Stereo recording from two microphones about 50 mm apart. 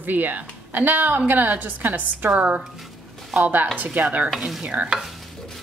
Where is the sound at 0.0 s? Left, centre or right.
Right.